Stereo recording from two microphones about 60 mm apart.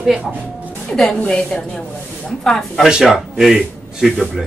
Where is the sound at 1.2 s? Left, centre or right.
Centre.